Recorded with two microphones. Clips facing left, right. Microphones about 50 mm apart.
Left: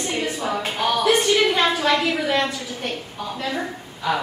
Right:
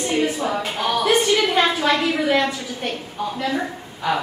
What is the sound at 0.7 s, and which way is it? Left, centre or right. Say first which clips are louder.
Music: left 2 dB; centre.